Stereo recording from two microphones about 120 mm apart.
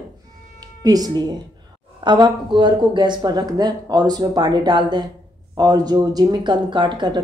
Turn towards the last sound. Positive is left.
turn(degrees=-40)  # may be behind; listen again after turning